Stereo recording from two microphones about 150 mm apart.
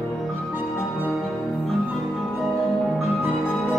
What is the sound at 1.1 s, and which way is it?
Music, centre (ahead or behind).